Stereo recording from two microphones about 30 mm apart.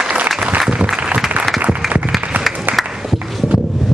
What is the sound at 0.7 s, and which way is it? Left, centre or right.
Applause, right.